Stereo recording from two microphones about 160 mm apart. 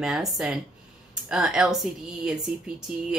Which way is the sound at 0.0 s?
Centre (ahead or behind).